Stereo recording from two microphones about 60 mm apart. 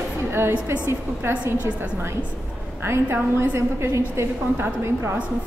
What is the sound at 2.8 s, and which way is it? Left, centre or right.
A woman's voice, right.